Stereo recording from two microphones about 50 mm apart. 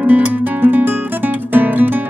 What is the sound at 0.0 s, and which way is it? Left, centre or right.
Guitar, right.